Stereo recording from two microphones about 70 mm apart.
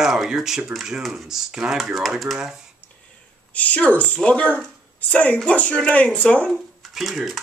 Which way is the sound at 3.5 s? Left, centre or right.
Left.